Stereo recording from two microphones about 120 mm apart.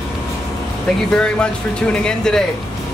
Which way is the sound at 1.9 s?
5° left (ahead or behind).